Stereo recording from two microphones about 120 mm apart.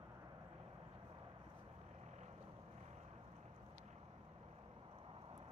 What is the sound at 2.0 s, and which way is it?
Vehicle, 75° right (ahead or behind).